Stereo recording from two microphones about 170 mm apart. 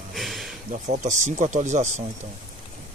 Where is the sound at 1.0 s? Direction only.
45° right (ahead or behind).